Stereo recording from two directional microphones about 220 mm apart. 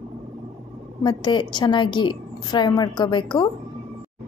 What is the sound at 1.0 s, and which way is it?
A woman's voice, 20° left (ahead or behind).